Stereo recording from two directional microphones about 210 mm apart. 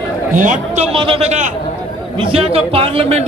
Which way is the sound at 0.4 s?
35° right (ahead or behind).